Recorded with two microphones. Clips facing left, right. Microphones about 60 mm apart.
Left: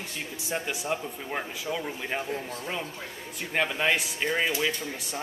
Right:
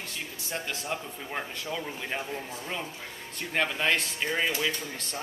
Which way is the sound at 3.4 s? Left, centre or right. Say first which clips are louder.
Left 1 dB; centre.